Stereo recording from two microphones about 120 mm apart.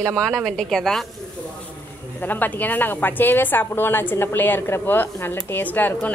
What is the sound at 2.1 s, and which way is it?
A woman's voice, 15° left (ahead or behind).